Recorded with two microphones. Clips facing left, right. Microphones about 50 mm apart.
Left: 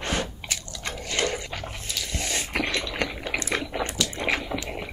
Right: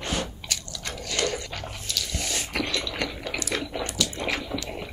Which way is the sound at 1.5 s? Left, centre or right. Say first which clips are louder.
Left 1 dB; centre.